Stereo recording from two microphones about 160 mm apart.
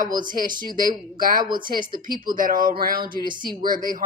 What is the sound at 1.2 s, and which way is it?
Speech, 60° right (ahead or behind).